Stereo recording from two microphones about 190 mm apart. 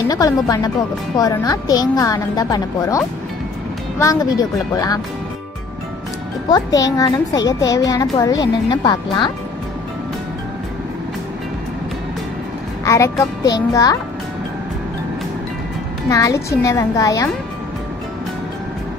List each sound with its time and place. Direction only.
0.1 s a child's voice: 20° left (ahead or behind)
6.5 s a child's voice: 20° left (ahead or behind)
12.8 s a child's voice: 15° left (ahead or behind)
16.1 s a child's voice: 15° left (ahead or behind)